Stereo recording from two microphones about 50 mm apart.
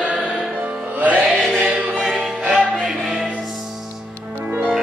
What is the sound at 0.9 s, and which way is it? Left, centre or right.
Music, right.